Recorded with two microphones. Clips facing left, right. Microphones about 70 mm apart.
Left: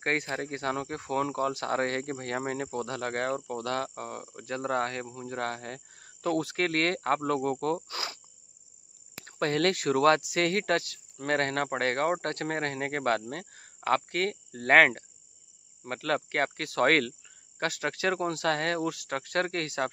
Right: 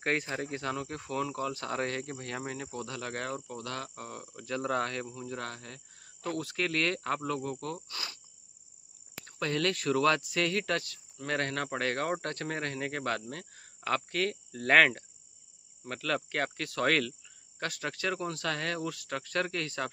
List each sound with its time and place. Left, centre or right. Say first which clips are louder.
0.3 s speech: left 3 dB; left
3.4 s speech: left 7 dB; left
3.9 s speech: left 5 dB; left
5.4 s speech: left 7 dB; left
7.9 s speech: left 5 dB; left
9.2 s speech: left 4 dB; left
9.8 s speech: left 4 dB; left
17.6 s speech: left 5 dB; left
17.8 s speech: left 5 dB; left